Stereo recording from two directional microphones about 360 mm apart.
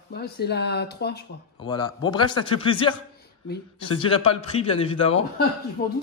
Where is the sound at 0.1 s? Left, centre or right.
Left.